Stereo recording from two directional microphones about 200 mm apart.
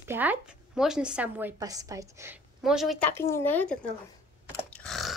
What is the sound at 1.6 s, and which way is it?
Speech, 15° right (ahead or behind).